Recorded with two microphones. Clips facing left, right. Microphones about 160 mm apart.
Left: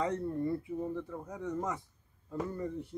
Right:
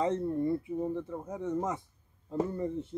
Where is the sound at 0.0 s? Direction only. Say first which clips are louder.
Right 3 dB; 25° right (ahead or behind).